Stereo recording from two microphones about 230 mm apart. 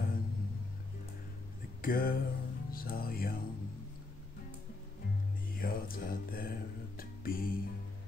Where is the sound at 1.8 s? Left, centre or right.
Left.